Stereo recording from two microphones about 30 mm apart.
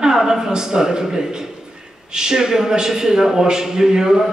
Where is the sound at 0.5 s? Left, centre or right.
Right.